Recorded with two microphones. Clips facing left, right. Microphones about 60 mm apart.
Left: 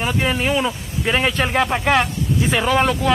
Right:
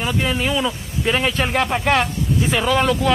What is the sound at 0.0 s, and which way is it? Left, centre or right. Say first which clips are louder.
Speech: left 1 dB; left.